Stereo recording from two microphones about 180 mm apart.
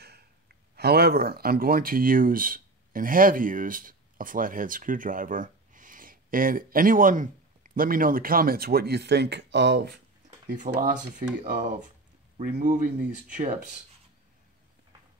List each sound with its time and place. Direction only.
0.0 s speech: 60° right (ahead or behind)
10.5 s speech: 45° right (ahead or behind)